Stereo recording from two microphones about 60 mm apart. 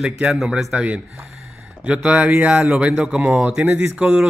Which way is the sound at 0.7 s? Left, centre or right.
Right.